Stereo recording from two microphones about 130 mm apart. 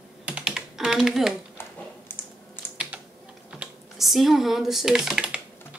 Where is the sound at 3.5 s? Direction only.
5° right (ahead or behind).